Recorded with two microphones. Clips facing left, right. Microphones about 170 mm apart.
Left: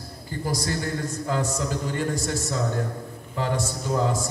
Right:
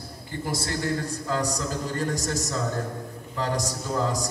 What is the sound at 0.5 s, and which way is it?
A man's voice, 30° right (ahead or behind).